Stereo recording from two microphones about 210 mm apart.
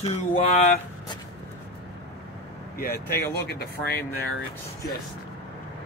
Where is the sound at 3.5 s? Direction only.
50° left (ahead or behind).